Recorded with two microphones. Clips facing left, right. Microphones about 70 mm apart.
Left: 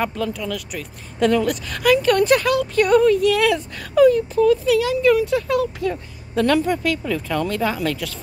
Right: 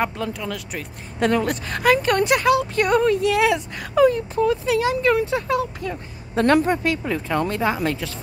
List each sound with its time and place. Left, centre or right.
0.0 s speech: right
6.3 s speech: right